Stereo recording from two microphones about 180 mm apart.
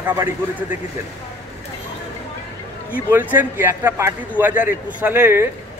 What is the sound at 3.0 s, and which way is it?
Speech, 10° right (ahead or behind).